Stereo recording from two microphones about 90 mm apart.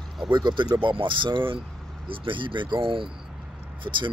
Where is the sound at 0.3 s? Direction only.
60° right (ahead or behind).